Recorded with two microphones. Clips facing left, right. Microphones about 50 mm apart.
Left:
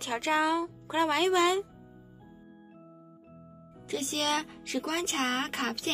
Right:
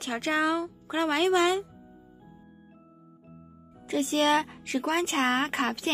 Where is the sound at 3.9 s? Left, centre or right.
Centre.